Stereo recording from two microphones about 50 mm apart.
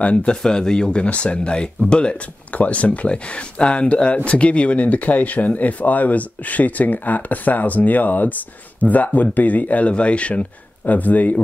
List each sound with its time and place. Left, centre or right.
0.0 s speech: left
0.4 s speech: centre; by 11.4 s left